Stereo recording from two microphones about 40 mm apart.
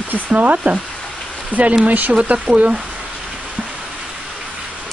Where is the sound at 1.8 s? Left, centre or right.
Right.